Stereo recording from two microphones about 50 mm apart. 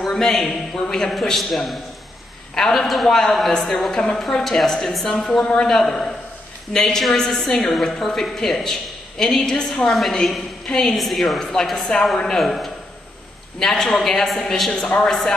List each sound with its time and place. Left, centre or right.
0.1 s a woman's voice: centre
9.8 s a man's voice: centre
11.7 s a woman's voice: centre
14.7 s a woman's voice: centre
15.0 s a woman's voice: centre